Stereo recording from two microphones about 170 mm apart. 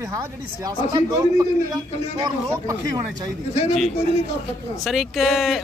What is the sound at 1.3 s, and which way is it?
A man's voice, 20° right (ahead or behind).